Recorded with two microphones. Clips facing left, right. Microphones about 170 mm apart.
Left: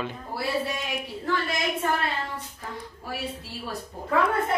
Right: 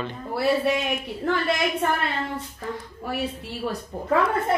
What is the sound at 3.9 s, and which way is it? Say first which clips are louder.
Speech: right 5 dB; 70° right (ahead or behind).